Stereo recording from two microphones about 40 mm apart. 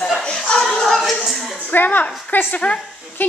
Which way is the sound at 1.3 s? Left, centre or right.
Centre.